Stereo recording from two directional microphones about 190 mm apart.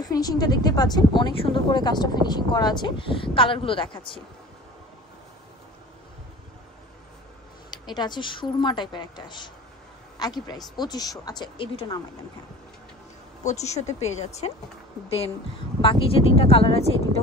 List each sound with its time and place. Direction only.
0.0 s a woman's voice: 20° left (ahead or behind)
7.7 s a woman's voice: 20° left (ahead or behind)
13.4 s speech: 35° left (ahead or behind)
15.8 s a woman's voice: 30° left (ahead or behind)